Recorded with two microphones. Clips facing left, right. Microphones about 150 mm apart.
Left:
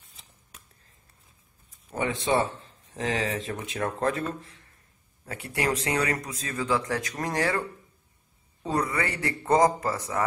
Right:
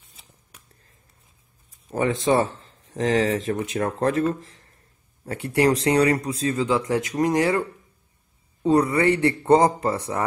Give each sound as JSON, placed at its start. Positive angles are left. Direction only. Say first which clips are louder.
{"t": 0.0, "sound": "a sound", "louder": "right 1 dB", "side_deg": 0}
{"t": 1.9, "sound": "speech", "louder": "right 5 dB", "side_deg": -35}
{"t": 8.6, "sound": "a man's voice", "louder": "right 9 dB", "side_deg": -30}